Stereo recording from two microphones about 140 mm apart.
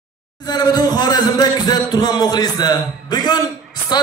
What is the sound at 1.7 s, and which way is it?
A man's voice, 30° left (ahead or behind).